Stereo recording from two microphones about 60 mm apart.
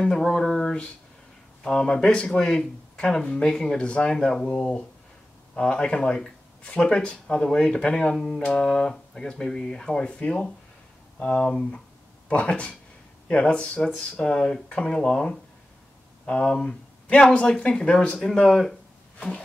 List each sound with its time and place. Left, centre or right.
0.0 s speech: centre